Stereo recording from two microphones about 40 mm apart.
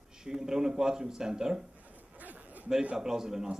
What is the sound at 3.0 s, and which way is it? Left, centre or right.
Speech, centre.